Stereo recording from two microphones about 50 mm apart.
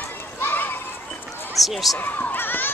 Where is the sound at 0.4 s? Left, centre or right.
Left.